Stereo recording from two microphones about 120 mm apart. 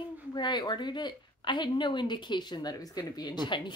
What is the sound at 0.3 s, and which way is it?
Speech, 35° left (ahead or behind).